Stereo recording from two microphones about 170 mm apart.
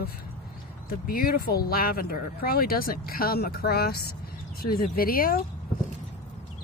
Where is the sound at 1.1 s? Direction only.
60° left (ahead or behind).